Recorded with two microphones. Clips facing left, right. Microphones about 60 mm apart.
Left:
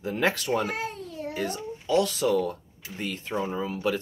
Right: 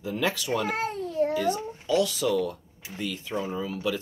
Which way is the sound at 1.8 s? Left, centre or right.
Left.